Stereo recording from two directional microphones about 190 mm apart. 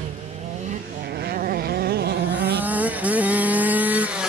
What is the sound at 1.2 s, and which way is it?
Vehicle, 55° right (ahead or behind).